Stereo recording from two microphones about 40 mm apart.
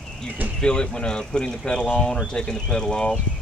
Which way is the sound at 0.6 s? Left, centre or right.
Left.